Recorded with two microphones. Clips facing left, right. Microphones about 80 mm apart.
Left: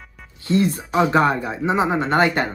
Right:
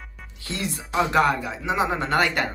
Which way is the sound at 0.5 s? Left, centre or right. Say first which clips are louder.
Left 10 dB; left.